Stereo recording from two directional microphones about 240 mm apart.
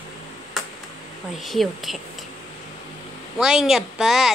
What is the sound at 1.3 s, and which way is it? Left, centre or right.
Speech, centre.